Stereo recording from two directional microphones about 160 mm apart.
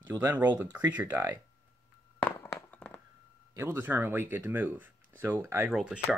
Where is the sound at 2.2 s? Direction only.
10° left (ahead or behind).